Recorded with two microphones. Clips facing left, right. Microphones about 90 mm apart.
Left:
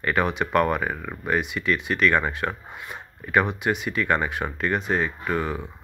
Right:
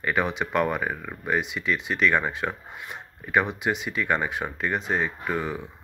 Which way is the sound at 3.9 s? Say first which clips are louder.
Left 2 dB; 5° right (ahead or behind).